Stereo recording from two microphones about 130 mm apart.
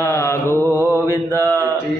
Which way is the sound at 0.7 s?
15° right (ahead or behind).